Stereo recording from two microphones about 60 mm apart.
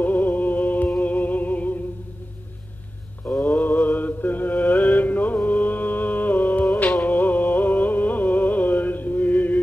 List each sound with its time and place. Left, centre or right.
0.0 s music: left
3.4 s mantra: left
7.0 s a sound: left